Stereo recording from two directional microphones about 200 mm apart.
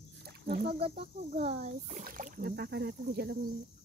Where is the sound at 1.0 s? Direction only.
30° right (ahead or behind).